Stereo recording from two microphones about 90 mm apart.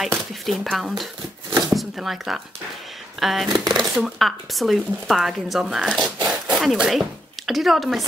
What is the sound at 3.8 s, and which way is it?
Speech, centre (ahead or behind).